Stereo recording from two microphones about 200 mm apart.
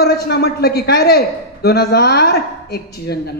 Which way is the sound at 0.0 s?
50° left (ahead or behind).